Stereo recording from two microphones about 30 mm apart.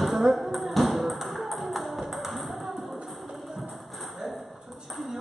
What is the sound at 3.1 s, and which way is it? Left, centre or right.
Music, centre.